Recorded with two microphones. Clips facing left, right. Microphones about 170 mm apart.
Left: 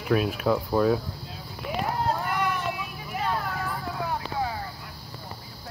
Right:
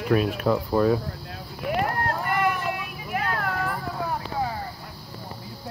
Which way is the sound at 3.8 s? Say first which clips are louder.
Right 1 dB; centre (ahead or behind).